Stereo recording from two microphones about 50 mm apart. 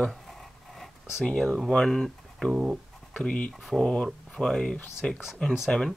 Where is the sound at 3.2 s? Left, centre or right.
Left.